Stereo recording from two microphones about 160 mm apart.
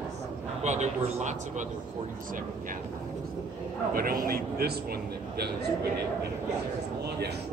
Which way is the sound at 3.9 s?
65° right (ahead or behind).